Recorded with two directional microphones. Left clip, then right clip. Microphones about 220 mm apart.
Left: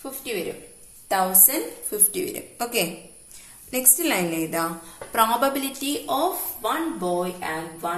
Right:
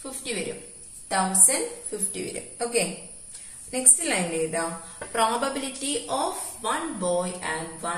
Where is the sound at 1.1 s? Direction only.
50° left (ahead or behind).